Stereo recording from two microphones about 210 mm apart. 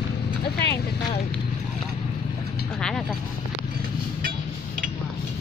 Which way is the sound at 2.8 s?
Centre (ahead or behind).